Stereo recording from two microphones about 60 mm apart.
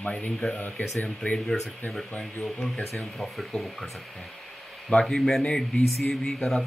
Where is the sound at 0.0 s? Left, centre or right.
Left.